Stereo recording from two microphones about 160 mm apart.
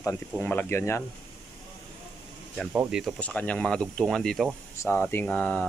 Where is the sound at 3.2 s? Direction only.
10° left (ahead or behind).